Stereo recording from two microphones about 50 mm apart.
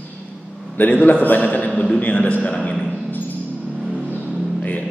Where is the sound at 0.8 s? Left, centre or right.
Left.